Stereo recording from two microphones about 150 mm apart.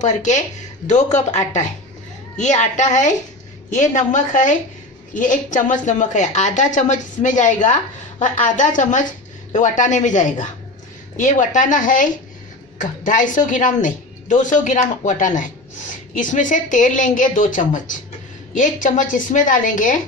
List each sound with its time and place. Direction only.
0.0 s a woman's voice: 55° left (ahead or behind)